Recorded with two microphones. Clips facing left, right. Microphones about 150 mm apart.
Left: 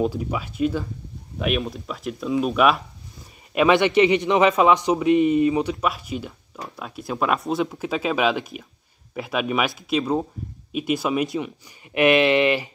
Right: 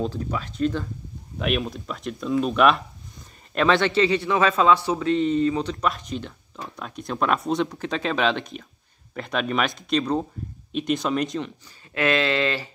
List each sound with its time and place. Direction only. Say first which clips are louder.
0.0 s a man's voice: left 3 dB; 10° left (ahead or behind)